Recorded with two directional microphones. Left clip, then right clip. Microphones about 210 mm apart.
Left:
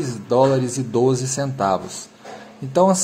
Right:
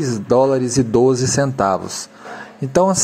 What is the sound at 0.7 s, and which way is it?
Speech, 30° right (ahead or behind).